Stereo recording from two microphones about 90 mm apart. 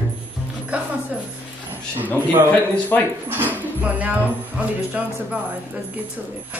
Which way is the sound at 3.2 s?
20° right (ahead or behind).